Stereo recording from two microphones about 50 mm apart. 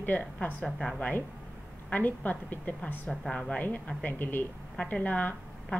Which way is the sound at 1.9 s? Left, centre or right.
Left.